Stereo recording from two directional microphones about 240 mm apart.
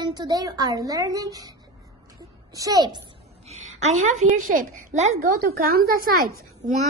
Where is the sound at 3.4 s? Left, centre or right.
Right.